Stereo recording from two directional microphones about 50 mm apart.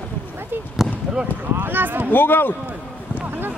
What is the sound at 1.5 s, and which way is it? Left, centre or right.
Speech, right.